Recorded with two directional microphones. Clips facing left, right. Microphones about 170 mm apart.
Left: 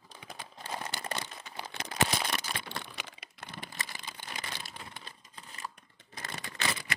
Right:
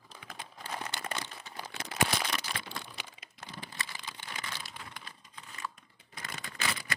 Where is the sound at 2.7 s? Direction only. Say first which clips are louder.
Left 2 dB; 65° left (ahead or behind).